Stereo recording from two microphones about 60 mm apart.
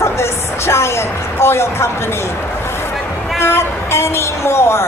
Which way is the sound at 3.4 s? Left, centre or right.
Left.